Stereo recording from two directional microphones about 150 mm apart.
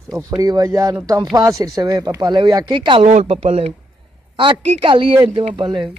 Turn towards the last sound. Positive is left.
turn(degrees=-35)  # may be behind; listen again after turning